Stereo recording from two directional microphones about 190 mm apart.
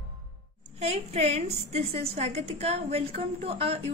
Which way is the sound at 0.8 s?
35° right (ahead or behind).